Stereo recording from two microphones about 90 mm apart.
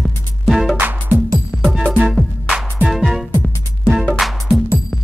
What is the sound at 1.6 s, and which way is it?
Music, centre (ahead or behind).